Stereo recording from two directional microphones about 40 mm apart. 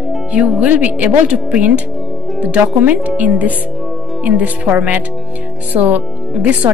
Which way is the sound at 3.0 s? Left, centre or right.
Right.